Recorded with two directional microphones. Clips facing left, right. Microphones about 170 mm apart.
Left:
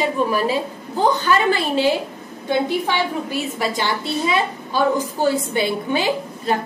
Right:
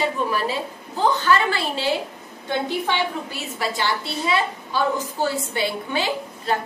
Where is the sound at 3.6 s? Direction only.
15° left (ahead or behind).